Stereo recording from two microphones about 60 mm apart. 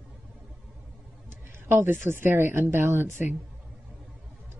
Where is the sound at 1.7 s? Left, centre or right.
Right.